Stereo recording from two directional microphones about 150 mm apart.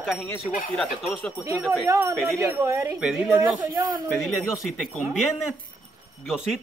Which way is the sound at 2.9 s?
5° right (ahead or behind).